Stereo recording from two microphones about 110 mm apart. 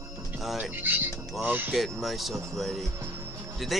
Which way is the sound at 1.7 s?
Centre (ahead or behind).